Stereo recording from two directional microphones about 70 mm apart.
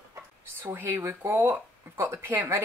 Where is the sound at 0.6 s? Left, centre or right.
Right.